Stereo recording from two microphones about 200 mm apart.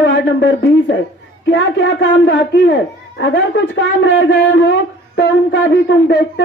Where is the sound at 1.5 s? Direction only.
70° left (ahead or behind).